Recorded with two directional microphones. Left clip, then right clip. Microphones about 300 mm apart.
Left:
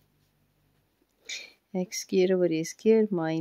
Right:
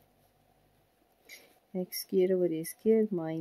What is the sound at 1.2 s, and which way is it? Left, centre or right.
Speech, centre.